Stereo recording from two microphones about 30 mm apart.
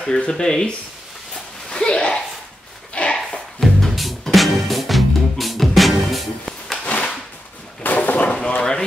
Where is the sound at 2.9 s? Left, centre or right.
Left.